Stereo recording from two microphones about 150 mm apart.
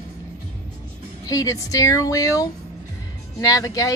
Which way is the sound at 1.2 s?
20° left (ahead or behind).